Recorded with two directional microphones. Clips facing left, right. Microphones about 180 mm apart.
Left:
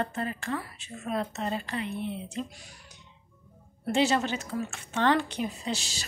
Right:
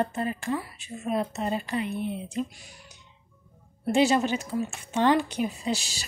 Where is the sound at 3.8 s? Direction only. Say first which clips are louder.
Right 3 dB; 15° right (ahead or behind).